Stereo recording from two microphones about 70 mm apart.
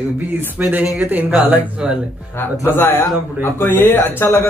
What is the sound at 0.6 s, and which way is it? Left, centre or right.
Speech, right.